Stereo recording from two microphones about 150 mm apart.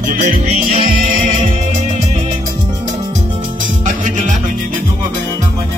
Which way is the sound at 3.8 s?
60° right (ahead or behind).